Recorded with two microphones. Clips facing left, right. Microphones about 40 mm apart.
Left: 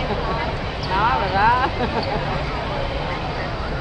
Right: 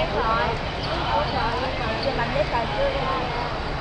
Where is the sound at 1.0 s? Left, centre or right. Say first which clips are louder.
Left 7 dB; left.